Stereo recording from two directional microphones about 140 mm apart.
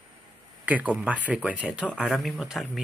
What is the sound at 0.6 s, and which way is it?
Speech, 10° right (ahead or behind).